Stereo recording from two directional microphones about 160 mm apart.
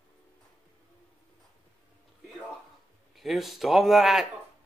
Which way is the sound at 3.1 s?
Centre (ahead or behind).